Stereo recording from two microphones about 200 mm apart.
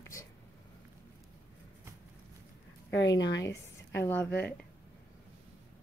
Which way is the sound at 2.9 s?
65° left (ahead or behind).